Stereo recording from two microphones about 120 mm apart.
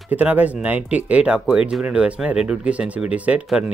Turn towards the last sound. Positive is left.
turn(degrees=-10)  # may be behind; listen again after turning